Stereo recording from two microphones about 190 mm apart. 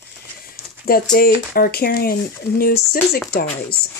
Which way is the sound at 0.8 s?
50° left (ahead or behind).